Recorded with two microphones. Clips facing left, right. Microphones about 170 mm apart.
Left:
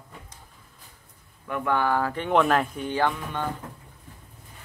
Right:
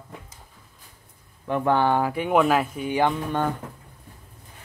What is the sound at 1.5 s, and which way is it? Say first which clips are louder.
Speech: right 4 dB; 30° right (ahead or behind).